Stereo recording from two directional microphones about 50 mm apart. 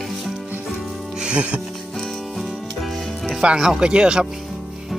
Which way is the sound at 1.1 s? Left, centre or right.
Centre.